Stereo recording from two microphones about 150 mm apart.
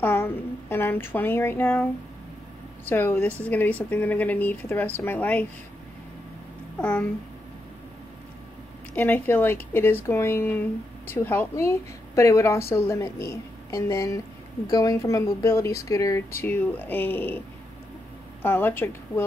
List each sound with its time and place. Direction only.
0.0 s speech: 15° left (ahead or behind)
6.8 s speech: 10° left (ahead or behind)
8.9 s a woman's voice: 15° left (ahead or behind)
18.4 s speech: 15° left (ahead or behind)